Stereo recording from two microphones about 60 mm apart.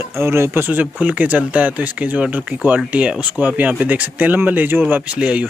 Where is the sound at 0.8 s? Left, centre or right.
Right.